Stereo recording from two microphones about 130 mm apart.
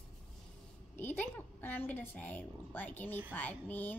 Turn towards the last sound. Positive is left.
turn(degrees=15)  # may be behind; listen again after turning